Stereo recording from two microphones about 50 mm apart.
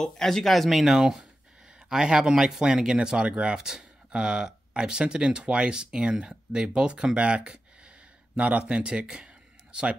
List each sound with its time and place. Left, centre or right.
0.0 s speech: centre
0.9 s speech: centre